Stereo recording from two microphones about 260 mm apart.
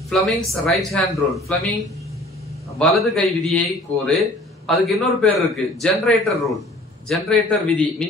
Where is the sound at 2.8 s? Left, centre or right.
Centre.